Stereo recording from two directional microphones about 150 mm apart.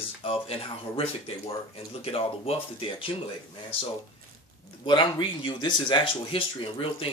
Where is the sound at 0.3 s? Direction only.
40° left (ahead or behind).